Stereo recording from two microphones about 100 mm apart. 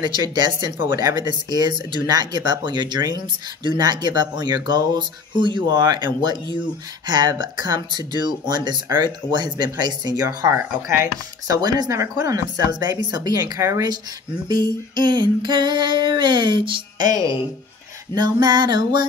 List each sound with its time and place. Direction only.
0.0 s speech: 45° right (ahead or behind); by 11.5 s 30° right (ahead or behind)
11.5 s speech: 40° right (ahead or behind)
13.6 s speech: 30° right (ahead or behind)
14.5 s speech: 45° right (ahead or behind)
18.1 s speech: 45° right (ahead or behind)